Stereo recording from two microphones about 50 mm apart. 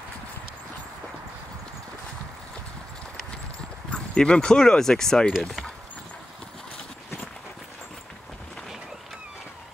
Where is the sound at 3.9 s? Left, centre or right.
Centre.